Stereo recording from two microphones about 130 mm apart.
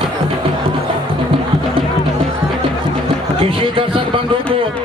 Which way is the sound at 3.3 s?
45° right (ahead or behind).